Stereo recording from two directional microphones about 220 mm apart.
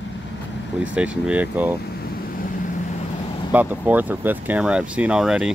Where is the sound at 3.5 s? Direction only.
10° right (ahead or behind).